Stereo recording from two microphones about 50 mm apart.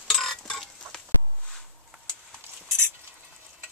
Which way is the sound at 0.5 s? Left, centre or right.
Centre.